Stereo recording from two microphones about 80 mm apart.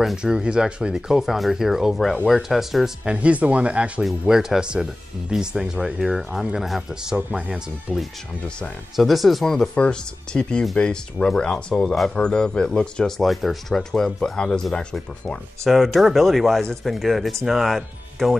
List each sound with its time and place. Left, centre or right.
0.0 s speech: centre
3.2 s speech: centre
13.2 s speech: centre
15.7 s speech: centre